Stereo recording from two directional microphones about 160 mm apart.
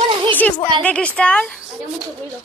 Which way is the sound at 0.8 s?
5° left (ahead or behind).